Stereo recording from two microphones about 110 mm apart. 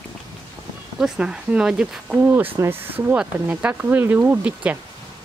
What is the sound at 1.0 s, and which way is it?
Speech, 5° right (ahead or behind).